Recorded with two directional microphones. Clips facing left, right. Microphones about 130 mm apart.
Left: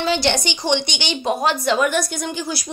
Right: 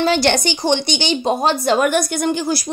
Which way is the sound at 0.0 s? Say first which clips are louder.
Right 4 dB; 50° right (ahead or behind).